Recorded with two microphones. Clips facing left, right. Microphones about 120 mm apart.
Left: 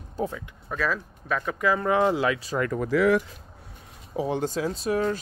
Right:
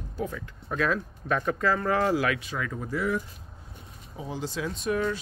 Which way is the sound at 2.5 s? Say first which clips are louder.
Left 7 dB; 60° left (ahead or behind).